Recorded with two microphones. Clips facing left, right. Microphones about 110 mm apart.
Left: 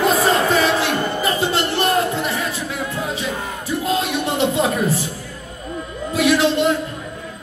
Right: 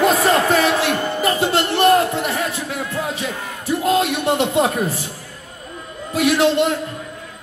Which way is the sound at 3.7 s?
60° right (ahead or behind).